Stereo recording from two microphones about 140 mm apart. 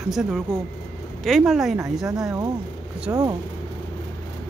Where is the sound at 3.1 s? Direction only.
20° right (ahead or behind).